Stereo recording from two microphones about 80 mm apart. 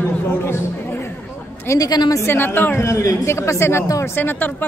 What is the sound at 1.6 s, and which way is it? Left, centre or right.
Speech, left.